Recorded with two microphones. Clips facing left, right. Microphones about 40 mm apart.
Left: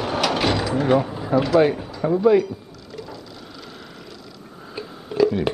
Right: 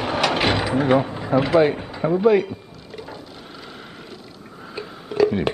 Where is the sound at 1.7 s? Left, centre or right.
Right.